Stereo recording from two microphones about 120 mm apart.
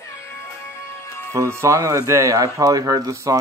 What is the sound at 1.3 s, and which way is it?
Speech, 25° right (ahead or behind).